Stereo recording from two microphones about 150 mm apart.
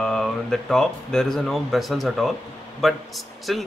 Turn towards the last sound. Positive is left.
turn(degrees=0)  # may be behind; listen again after turning